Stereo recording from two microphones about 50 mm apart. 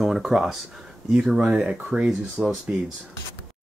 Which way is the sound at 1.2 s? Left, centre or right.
Centre.